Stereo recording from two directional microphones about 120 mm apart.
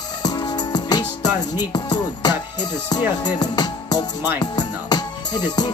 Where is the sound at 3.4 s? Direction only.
35° left (ahead or behind).